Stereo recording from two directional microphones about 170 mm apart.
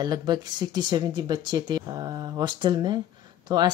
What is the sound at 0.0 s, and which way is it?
Speech, 25° right (ahead or behind).